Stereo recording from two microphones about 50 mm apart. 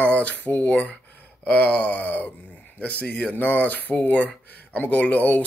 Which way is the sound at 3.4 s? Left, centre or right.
Left.